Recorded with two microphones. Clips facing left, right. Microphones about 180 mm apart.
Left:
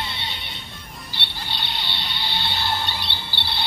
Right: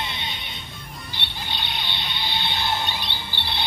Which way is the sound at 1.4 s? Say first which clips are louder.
Even; 15° right (ahead or behind).